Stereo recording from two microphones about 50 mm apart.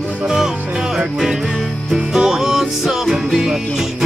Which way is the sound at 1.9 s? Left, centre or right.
Centre.